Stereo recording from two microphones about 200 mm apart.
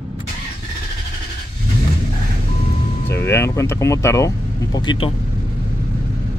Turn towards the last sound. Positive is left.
turn(degrees=25)  # may be behind; listen again after turning